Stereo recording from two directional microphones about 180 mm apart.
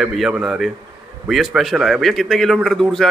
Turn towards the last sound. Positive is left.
turn(degrees=0)  # may be behind; listen again after turning